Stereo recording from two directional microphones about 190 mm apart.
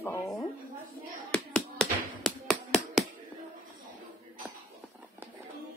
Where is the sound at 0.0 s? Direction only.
10° left (ahead or behind).